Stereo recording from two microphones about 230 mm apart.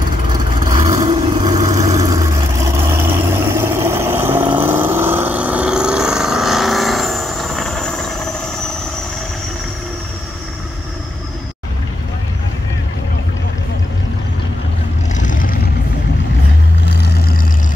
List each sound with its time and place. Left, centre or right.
0.7 s vehicle: centre
15.1 s vehicle: left
16.9 s vehicle: left